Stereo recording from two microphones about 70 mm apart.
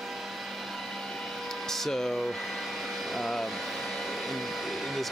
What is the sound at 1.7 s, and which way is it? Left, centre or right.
Speech, centre.